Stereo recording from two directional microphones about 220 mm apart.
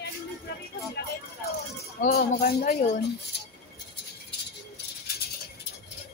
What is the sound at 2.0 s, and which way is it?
Speech, 45° left (ahead or behind).